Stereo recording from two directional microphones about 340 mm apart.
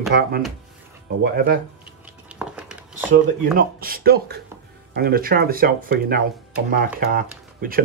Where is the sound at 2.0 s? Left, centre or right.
Centre.